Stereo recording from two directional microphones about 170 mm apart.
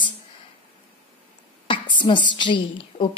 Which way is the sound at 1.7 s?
30° left (ahead or behind).